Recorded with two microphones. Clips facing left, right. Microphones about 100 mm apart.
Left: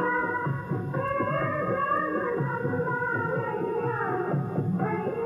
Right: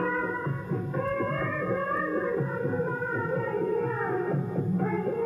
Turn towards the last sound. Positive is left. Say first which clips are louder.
# even
turn(degrees=20)  # may be behind; listen again after turning